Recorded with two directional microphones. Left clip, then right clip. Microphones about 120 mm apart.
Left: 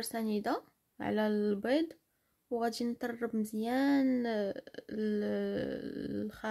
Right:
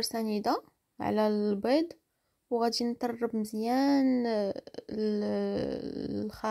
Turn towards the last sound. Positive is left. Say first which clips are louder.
# right 4 dB
turn(degrees=-35)  # may be behind; listen again after turning